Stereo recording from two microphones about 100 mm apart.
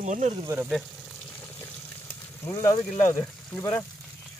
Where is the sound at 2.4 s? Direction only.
35° left (ahead or behind).